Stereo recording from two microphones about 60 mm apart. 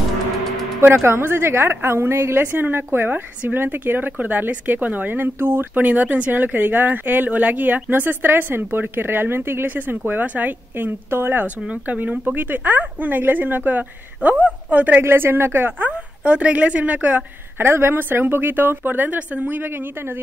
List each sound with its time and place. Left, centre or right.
0.7 s a woman's voice: right
11.4 s speech: right
15.0 s a woman's voice: right
15.9 s speech: centre
17.6 s a woman's voice: right